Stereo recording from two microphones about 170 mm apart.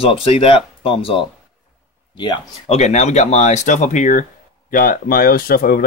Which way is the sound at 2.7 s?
40° left (ahead or behind).